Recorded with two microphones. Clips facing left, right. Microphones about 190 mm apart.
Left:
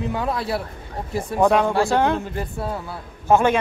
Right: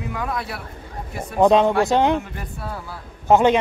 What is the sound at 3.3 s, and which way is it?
Speech, 20° right (ahead or behind).